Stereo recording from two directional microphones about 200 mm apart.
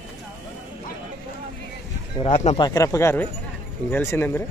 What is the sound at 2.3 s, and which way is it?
Speech, 35° left (ahead or behind).